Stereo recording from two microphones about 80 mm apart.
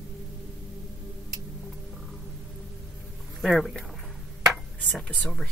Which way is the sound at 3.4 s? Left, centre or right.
Centre.